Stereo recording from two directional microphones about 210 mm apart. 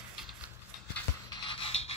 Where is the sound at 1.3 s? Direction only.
25° left (ahead or behind).